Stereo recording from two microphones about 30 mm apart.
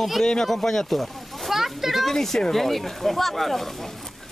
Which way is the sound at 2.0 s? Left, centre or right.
Centre.